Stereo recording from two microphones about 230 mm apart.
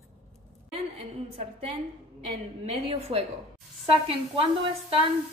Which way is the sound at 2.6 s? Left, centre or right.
Right.